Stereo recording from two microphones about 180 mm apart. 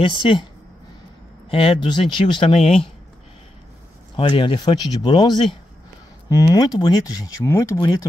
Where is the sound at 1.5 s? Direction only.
30° left (ahead or behind).